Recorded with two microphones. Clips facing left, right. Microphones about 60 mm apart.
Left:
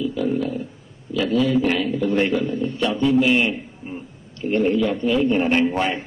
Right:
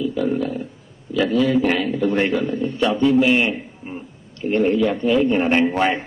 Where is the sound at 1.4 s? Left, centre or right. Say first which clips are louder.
Even; centre.